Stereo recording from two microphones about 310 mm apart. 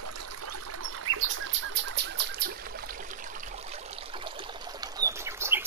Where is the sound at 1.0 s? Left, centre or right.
Right.